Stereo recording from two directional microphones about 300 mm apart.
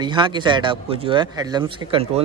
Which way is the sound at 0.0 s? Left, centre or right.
Centre.